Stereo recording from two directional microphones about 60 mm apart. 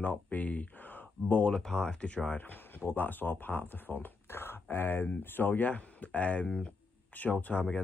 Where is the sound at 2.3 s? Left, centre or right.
Left.